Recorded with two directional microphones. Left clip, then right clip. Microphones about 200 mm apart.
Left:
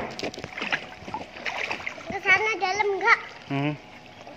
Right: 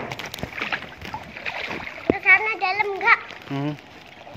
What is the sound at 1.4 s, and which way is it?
Boat, 20° right (ahead or behind).